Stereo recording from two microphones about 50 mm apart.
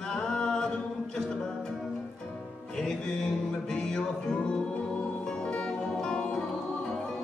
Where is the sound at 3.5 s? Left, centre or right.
Centre.